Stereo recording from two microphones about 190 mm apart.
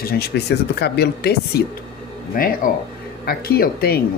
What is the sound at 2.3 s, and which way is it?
Speech, 45° left (ahead or behind).